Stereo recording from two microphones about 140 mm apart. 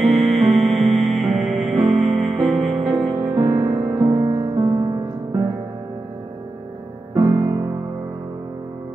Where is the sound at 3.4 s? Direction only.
30° right (ahead or behind).